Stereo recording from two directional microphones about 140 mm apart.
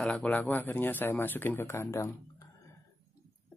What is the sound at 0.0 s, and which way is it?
Speech, 10° left (ahead or behind).